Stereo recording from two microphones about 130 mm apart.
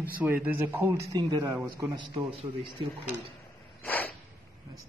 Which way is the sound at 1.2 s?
30° right (ahead or behind).